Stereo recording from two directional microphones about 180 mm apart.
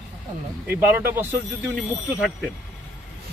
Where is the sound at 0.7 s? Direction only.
10° right (ahead or behind).